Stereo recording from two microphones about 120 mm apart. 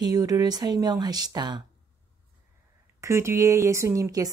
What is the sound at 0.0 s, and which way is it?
Speech, 30° right (ahead or behind).